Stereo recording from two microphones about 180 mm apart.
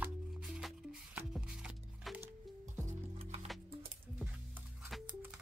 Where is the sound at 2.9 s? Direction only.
40° right (ahead or behind).